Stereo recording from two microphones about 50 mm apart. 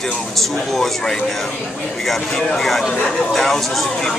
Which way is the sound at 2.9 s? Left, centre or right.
Centre.